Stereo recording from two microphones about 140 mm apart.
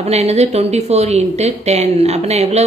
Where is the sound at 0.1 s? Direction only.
50° right (ahead or behind).